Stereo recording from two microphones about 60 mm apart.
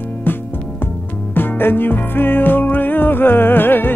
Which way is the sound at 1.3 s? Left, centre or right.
Left.